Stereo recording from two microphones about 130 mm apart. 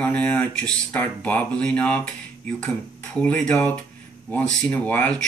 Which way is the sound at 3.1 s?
10° left (ahead or behind).